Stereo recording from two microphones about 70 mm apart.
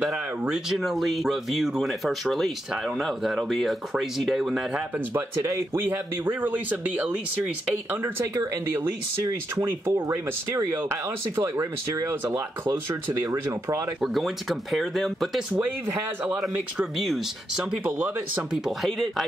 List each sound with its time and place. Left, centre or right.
0.7 s speech: centre
5.7 s speech: right
9.7 s speech: right
10.0 s speech: right
13.2 s speech: right
14.0 s speech: centre
15.5 s speech: right
16.9 s speech: centre
17.8 s speech: right
18.5 s speech: centre